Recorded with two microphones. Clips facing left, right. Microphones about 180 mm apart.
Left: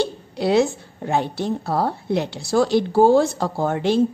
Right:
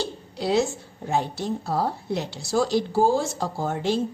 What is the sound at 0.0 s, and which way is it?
A woman's voice, 60° left (ahead or behind).